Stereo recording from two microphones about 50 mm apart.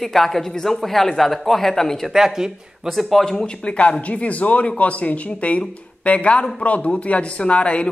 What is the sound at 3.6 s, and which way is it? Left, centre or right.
A man's voice, left.